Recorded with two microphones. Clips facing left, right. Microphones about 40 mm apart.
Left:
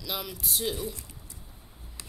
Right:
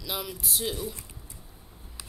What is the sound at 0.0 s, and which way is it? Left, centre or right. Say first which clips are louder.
Speech: right 1 dB; centre.